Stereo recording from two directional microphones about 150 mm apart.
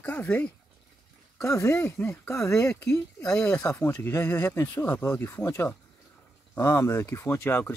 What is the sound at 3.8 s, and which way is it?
Speech, 20° left (ahead or behind).